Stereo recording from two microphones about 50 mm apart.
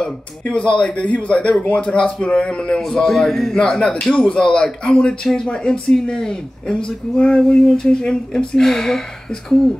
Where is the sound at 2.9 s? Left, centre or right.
Centre.